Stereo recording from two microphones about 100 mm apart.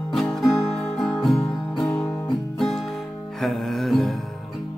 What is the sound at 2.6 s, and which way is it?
Music, 5° left (ahead or behind).